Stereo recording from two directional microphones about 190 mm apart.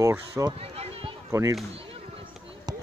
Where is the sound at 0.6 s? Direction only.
30° right (ahead or behind).